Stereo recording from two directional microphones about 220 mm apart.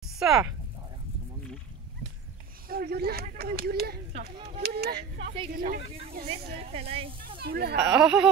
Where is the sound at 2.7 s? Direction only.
45° right (ahead or behind).